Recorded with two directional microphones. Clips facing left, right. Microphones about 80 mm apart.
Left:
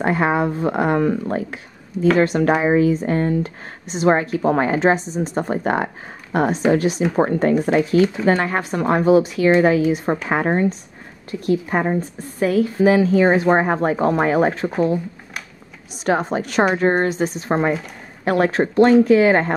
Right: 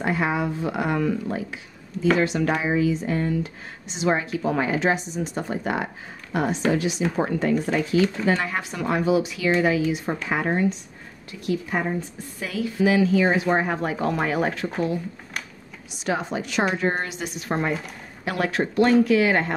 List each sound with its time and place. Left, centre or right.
0.0 s a woman's voice: left
15.9 s a woman's voice: left